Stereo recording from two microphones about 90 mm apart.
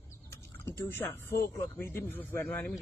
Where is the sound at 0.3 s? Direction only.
25° left (ahead or behind).